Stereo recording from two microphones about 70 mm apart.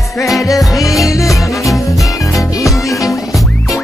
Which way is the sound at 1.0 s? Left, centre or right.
Left.